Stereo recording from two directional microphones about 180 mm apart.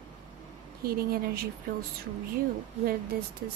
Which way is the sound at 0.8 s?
55° right (ahead or behind).